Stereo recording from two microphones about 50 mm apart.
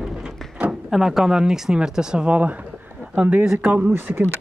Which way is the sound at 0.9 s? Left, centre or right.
Centre.